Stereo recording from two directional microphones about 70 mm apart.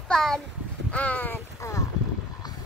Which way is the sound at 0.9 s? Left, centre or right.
Left.